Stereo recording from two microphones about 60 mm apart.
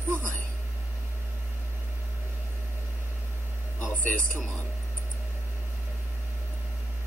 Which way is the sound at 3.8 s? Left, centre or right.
Left.